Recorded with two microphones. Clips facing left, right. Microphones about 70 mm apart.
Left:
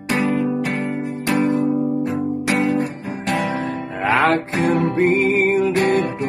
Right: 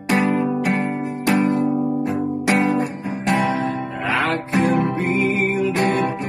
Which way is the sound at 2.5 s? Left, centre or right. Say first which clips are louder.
Right 1 dB; right.